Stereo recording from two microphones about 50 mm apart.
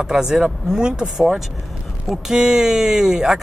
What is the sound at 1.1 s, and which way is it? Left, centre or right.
Speech, centre.